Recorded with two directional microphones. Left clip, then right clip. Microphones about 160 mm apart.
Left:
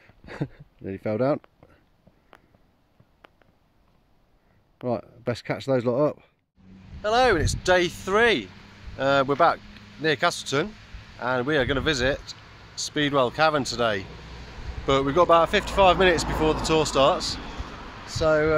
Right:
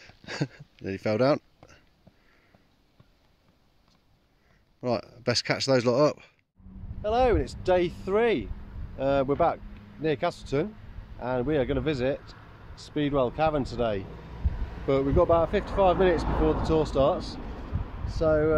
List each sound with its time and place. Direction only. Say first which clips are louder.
0.0 s a sound: right 1 dB; centre (ahead or behind)
4.8 s speech: even; centre (ahead or behind)
7.0 s speech: left 3 dB; 15° left (ahead or behind)
16.3 s speech: left 2 dB; 50° left (ahead or behind)
16.6 s speech: left 5 dB; 10° left (ahead or behind)
17.4 s a sound: left 4 dB; 35° left (ahead or behind)
18.0 s speech: left 3 dB; centre (ahead or behind)